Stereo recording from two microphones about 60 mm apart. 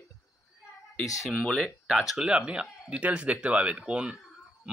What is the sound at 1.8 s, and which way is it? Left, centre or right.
Speech, centre.